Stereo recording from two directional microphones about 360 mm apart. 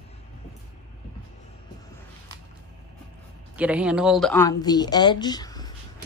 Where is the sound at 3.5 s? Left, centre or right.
Centre.